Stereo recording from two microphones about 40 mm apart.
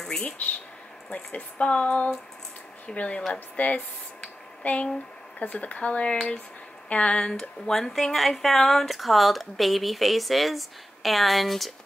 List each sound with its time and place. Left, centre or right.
0.0 s a sound: centre
1.3 s speech: left; by 7.7 s centre
7.7 s speech: centre